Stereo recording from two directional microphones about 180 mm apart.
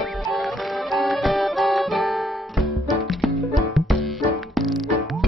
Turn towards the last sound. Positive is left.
turn(degrees=0)  # may be behind; listen again after turning